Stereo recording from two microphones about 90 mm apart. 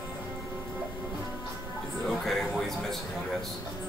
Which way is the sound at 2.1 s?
Centre (ahead or behind).